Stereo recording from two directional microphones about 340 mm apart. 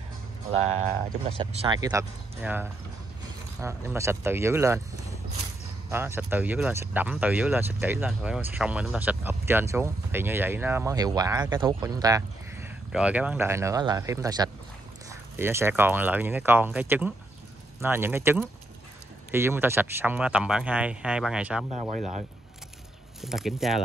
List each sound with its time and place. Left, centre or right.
1.3 s speech: centre
5.9 s speech: centre
21.7 s speech: centre
23.2 s speech: centre